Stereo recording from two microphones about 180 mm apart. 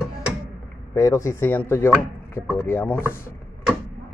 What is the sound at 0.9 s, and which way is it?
Speech, 15° left (ahead or behind).